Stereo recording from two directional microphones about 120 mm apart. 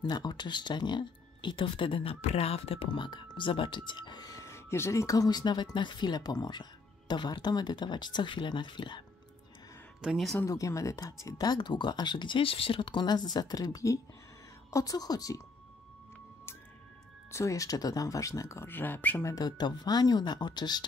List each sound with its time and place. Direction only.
0.0 s speech: 35° left (ahead or behind)
10.0 s speech: centre (ahead or behind)
10.4 s speech: 25° left (ahead or behind)
17.3 s speech: 25° left (ahead or behind)
19.3 s speech: 35° left (ahead or behind)